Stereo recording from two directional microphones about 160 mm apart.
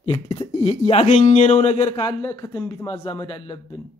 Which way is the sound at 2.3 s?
20° left (ahead or behind).